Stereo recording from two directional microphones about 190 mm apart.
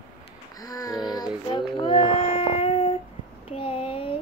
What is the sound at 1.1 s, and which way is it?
Child singing, 20° left (ahead or behind).